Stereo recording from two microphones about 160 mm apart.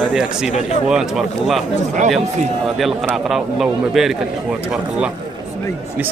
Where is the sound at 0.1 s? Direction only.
5° right (ahead or behind).